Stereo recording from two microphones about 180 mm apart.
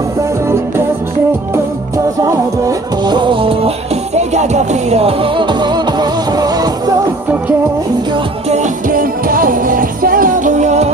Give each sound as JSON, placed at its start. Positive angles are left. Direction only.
{"t": 3.0, "sound": "music", "side_deg": -25}
{"t": 8.1, "sound": "music", "side_deg": -40}